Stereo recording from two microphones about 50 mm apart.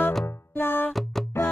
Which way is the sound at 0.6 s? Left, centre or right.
Left.